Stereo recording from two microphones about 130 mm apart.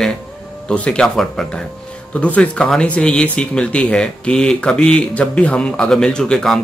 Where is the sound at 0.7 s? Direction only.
5° left (ahead or behind).